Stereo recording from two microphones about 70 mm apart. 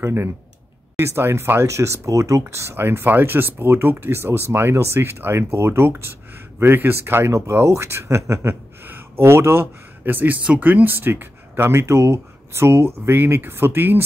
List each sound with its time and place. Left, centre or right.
0.0 s speech: right